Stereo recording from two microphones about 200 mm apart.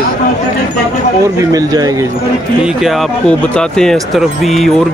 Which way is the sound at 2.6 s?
Centre (ahead or behind).